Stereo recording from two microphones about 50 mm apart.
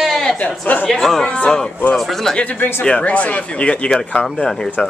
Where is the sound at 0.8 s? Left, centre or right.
Centre.